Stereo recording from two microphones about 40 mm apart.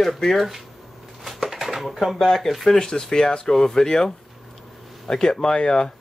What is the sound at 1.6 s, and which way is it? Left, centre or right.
Speech, centre.